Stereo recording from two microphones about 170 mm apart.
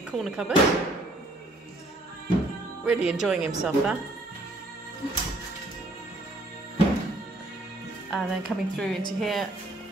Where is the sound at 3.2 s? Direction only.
5° right (ahead or behind).